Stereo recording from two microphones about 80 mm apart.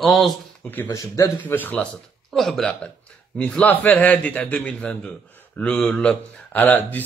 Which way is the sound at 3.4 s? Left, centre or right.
Left.